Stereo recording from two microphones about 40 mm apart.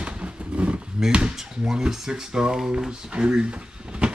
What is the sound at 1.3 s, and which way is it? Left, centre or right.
Speech, centre.